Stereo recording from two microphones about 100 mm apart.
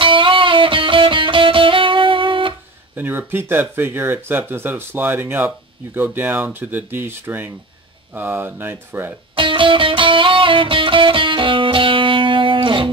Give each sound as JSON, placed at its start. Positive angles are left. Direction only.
{"t": 0.0, "sound": "music", "side_deg": -60}
{"t": 3.0, "sound": "speech", "side_deg": -20}
{"t": 9.3, "sound": "music", "side_deg": -55}